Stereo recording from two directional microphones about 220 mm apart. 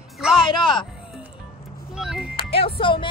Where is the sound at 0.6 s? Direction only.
20° left (ahead or behind).